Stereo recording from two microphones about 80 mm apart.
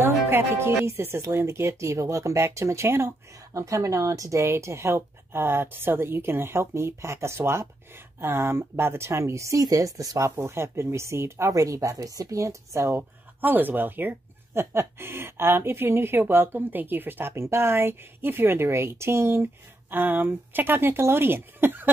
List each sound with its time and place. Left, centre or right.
0.0 s speech: right